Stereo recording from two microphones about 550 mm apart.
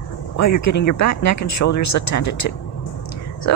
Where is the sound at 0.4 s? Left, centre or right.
Left.